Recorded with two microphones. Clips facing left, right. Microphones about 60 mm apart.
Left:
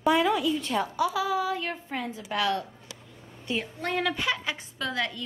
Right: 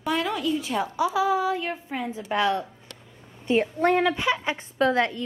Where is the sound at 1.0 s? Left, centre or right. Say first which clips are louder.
Right 6 dB; centre.